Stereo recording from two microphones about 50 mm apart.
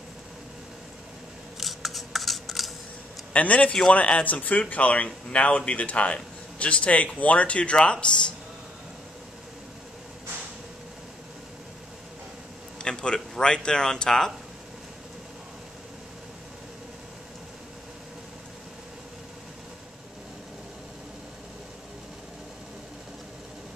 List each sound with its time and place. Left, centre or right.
1.6 s scissors: centre
3.3 s speech: left
12.8 s a man's voice: centre